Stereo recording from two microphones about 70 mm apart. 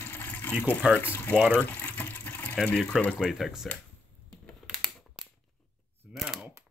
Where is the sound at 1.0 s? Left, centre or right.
Left.